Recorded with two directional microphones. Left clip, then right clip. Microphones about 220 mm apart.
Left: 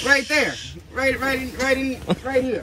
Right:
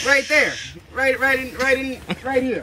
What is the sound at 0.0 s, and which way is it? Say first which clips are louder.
Speech: right 2 dB; centre (ahead or behind).